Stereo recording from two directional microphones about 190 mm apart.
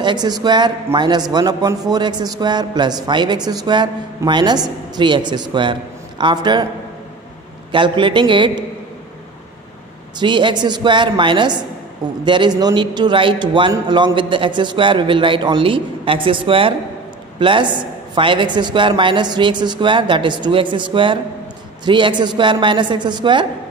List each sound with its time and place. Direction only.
0.0 s a man's voice: 20° right (ahead or behind)
7.7 s a man's voice: 25° right (ahead or behind)
10.1 s a man's voice: 25° right (ahead or behind)